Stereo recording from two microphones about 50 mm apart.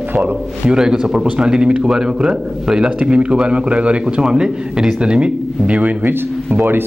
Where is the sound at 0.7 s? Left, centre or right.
Centre.